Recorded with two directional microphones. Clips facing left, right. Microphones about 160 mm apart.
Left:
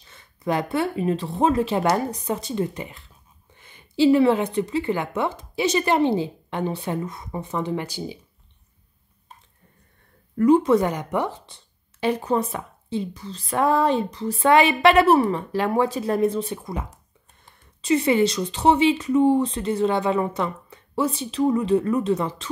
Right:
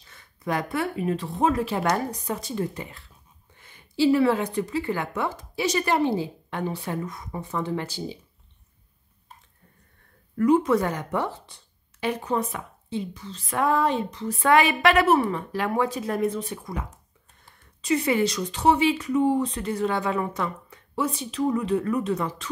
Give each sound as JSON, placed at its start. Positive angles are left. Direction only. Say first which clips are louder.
{"t": 0.1, "sound": "speech", "louder": "left 3 dB", "side_deg": 25}
{"t": 10.3, "sound": "speech", "louder": "left 3 dB", "side_deg": 30}
{"t": 10.8, "sound": "speech", "louder": "left 3 dB", "side_deg": 15}
{"t": 17.8, "sound": "speech", "louder": "left 4 dB", "side_deg": 25}